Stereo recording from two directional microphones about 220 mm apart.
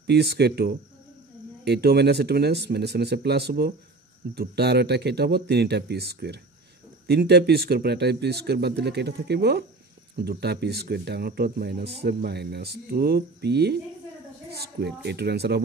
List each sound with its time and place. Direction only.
0.0 s speech: 45° right (ahead or behind)